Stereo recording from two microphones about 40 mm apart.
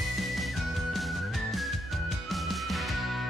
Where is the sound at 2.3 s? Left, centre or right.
Centre.